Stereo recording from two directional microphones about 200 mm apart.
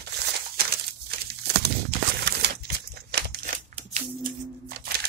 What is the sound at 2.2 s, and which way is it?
Crumpling, 55° right (ahead or behind).